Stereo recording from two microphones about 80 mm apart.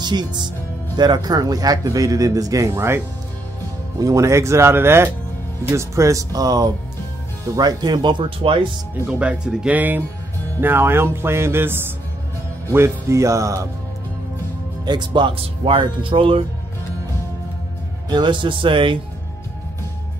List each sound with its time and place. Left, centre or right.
0.0 s a man's voice: right
2.7 s speech: right
4.0 s a man's voice: right
9.0 s speech: centre; by 13.7 s right
14.9 s speech: right
18.1 s speech: right